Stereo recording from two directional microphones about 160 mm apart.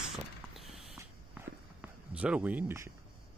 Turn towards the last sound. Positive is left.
turn(degrees=-15)  # may be behind; listen again after turning